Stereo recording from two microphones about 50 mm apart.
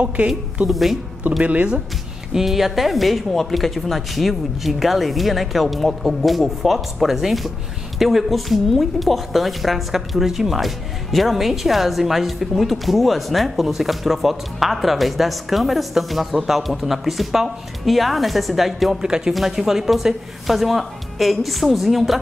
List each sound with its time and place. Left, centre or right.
0.7 s a woman's voice: centre
1.4 s speech: right
2.3 s a woman's voice: centre